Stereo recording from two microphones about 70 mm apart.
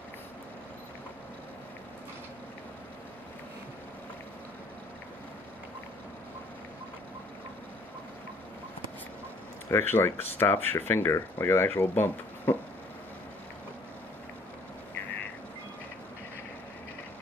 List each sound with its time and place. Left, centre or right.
9.7 s speech: left